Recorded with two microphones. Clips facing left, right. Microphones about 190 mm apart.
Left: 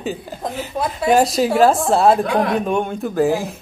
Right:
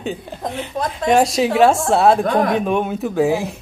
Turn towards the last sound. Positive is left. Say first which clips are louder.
# even
turn(degrees=0)  # may be behind; listen again after turning